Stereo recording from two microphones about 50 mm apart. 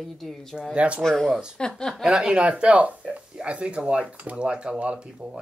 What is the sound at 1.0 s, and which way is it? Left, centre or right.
Speech, centre.